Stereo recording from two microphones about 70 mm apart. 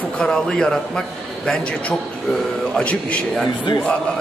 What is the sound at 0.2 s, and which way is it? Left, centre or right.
Speech, centre.